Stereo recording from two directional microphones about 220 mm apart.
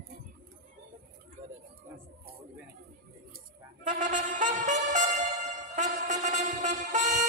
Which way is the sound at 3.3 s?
35° right (ahead or behind).